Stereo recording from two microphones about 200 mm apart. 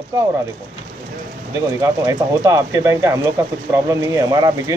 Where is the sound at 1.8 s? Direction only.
15° right (ahead or behind).